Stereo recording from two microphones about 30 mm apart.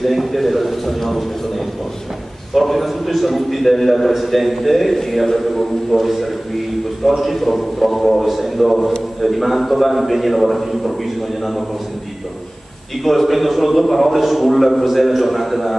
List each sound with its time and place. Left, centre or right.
0.0 s a sound: centre
2.5 s a man's voice: centre
13.0 s a man's voice: centre